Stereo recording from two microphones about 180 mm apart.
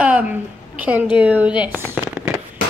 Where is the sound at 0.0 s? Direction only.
5° right (ahead or behind).